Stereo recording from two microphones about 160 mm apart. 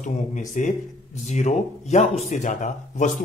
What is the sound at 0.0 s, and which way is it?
Speech, 50° left (ahead or behind).